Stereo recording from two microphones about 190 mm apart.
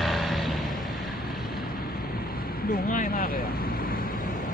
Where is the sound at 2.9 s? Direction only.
45° left (ahead or behind).